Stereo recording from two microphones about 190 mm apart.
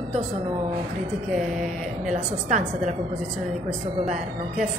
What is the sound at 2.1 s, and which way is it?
Speech, 40° right (ahead or behind).